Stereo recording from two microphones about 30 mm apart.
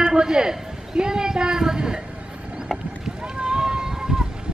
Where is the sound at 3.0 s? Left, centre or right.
Right.